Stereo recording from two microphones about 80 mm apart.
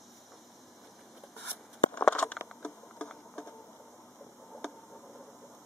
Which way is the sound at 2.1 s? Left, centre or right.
Centre.